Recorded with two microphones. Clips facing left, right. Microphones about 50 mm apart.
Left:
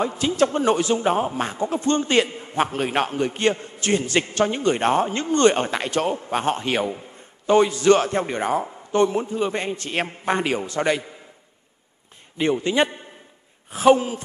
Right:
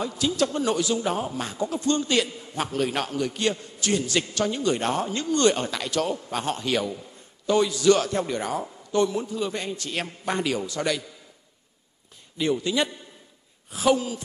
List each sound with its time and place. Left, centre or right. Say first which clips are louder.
0.0 s a man's voice: left 4 dB; left
12.4 s a man's voice: left 4 dB; left